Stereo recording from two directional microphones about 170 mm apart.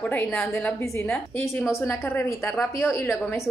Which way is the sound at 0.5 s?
15° left (ahead or behind).